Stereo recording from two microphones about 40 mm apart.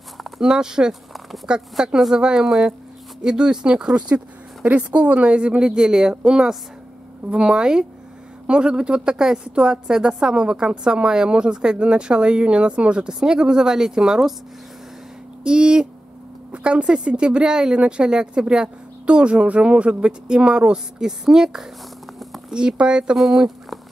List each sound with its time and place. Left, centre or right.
0.4 s a woman's voice: centre
4.6 s a woman's voice: right; by 14.3 s centre
15.4 s a woman's voice: right
22.5 s a woman's voice: right
23.1 s speech: centre